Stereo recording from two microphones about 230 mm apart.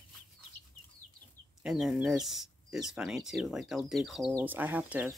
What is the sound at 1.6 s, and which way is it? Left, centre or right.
Speech, centre.